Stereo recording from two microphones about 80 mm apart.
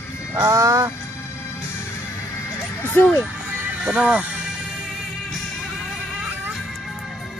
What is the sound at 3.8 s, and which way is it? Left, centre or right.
Speech, centre.